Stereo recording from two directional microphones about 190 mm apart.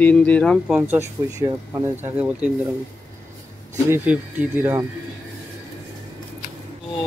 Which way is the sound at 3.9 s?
10° right (ahead or behind).